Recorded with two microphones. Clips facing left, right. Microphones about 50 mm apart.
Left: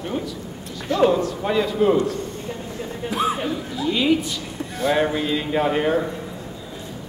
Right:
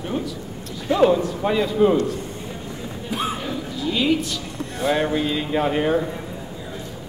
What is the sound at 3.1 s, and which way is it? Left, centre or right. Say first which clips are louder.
Music: left 3 dB; centre.